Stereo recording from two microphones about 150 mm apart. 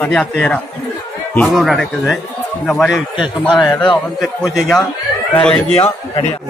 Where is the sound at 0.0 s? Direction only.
5° left (ahead or behind).